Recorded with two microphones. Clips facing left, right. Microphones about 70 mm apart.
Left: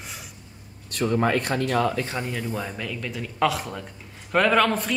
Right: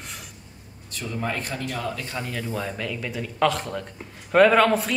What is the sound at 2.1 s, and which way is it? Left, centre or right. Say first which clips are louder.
Speech: left 1 dB; centre.